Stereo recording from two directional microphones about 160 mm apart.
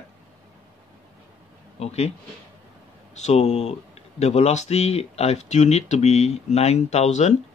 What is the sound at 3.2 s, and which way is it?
Speech, 45° left (ahead or behind).